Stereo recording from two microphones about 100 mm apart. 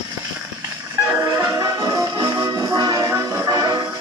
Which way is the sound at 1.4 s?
25° right (ahead or behind).